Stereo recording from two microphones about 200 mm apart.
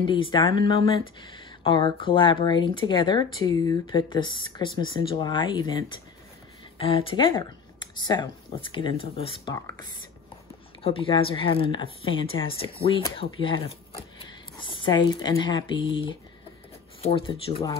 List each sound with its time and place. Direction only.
0.0 s speech: 25° left (ahead or behind)